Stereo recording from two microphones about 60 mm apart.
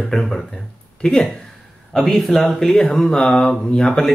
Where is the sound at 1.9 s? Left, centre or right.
Centre.